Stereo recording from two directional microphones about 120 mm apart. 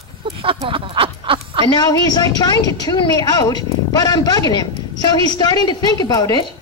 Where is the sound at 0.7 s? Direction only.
50° right (ahead or behind).